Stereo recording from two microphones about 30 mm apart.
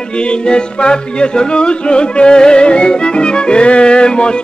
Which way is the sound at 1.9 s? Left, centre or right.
Left.